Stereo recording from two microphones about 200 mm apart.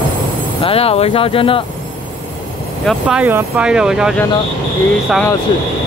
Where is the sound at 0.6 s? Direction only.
30° left (ahead or behind).